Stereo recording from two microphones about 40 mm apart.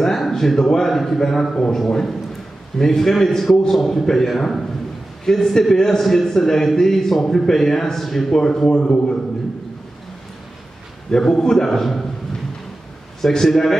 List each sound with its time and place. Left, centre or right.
0.3 s a man's voice: centre
8.4 s a man's voice: centre
11.1 s a man's voice: centre
13.2 s a man's voice: centre